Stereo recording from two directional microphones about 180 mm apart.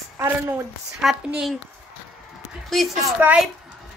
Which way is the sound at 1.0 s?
5° right (ahead or behind).